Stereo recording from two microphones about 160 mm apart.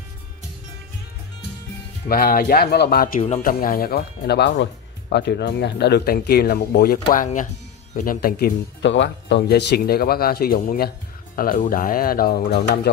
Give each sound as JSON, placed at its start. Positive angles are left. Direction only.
{"t": 2.0, "sound": "speech", "side_deg": 65}